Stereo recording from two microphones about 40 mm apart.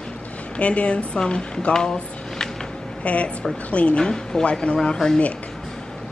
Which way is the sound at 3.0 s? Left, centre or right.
Left.